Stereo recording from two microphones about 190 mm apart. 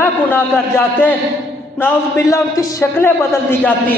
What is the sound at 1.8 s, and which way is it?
A man's voice, 15° left (ahead or behind).